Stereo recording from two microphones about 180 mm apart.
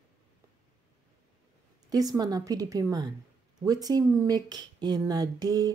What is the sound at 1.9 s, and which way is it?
Speech, 20° right (ahead or behind).